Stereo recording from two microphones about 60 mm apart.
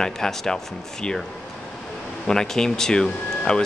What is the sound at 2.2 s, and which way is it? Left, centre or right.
Speech, centre.